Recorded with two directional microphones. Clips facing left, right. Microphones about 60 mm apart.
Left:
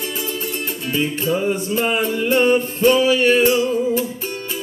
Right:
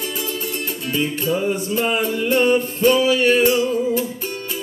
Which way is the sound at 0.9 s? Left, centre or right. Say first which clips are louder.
Left 1 dB; left.